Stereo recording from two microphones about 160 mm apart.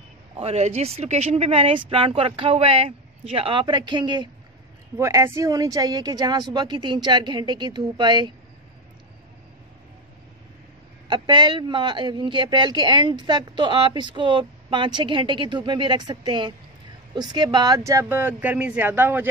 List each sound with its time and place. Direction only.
0.4 s a man's voice: 40° right (ahead or behind)
11.1 s a man's voice: 30° right (ahead or behind); by 19.2 s 10° right (ahead or behind)